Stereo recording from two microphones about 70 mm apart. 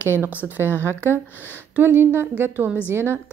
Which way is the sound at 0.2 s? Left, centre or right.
Right.